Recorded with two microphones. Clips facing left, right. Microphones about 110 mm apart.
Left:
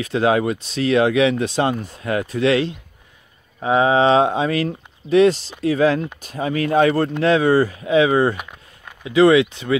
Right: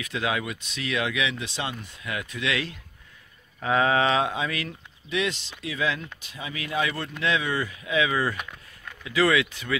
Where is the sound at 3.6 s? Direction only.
20° left (ahead or behind).